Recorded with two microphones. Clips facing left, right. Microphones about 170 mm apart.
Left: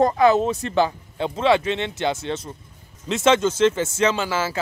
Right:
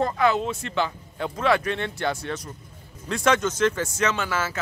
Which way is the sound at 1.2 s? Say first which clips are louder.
Left 4 dB; 25° left (ahead or behind).